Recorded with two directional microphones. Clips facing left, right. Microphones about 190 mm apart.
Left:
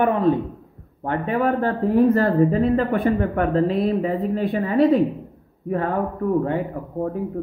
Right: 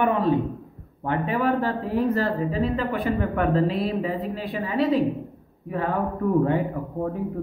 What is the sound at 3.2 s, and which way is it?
Speech, 40° left (ahead or behind).